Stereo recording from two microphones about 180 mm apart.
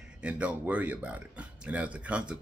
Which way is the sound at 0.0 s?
5° right (ahead or behind).